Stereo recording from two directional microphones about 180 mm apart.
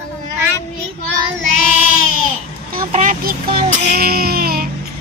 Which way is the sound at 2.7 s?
50° right (ahead or behind).